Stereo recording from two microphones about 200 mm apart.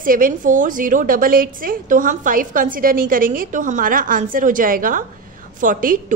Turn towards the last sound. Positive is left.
turn(degrees=-40)  # may be behind; listen again after turning